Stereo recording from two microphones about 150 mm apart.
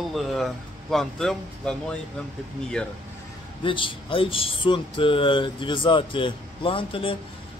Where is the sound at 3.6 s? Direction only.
35° left (ahead or behind).